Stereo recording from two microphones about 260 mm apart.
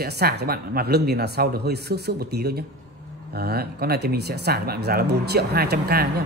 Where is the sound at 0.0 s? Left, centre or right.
Right.